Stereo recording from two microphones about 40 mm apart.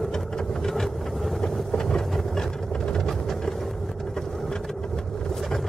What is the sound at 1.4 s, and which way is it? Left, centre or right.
Vehicle, centre.